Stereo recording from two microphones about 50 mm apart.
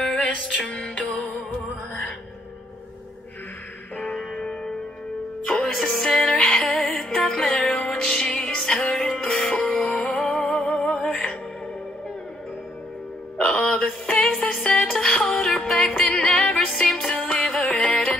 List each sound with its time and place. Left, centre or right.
0.0 s music: left
4.2 s music: centre
6.7 s music: centre
9.8 s music: left
10.2 s music: centre
13.4 s a sound: left
13.8 s music: left
14.7 s music: centre
15.7 s music: left
16.7 s music: centre